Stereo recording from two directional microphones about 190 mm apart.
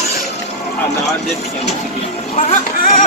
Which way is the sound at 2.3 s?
40° left (ahead or behind).